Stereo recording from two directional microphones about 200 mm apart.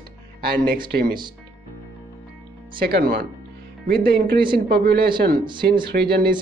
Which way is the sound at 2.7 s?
50° right (ahead or behind).